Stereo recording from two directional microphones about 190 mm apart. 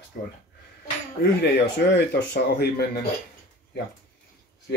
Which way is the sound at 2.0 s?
55° left (ahead or behind).